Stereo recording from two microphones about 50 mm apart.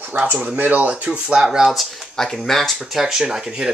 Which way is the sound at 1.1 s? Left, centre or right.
Centre.